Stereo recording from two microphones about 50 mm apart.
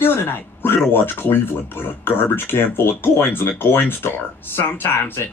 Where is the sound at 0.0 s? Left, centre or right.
Left.